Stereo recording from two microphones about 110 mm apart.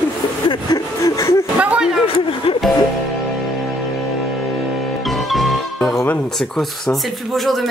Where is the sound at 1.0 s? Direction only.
25° left (ahead or behind).